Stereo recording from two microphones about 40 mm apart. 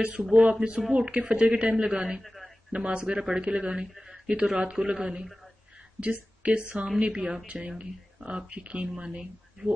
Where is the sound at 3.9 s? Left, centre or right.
Centre.